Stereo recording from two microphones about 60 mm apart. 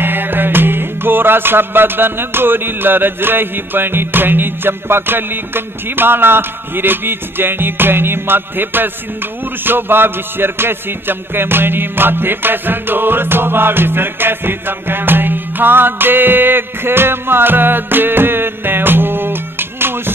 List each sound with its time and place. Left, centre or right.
0.0 s music: right